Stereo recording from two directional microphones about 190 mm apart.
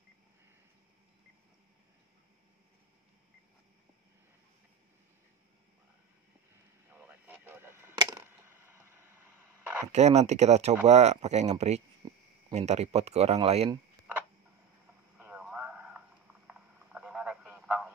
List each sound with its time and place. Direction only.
7.0 s radio: 10° right (ahead or behind)
8.0 s a sound: 15° right (ahead or behind)
9.9 s speech: 35° right (ahead or behind)
15.1 s radio: 10° right (ahead or behind)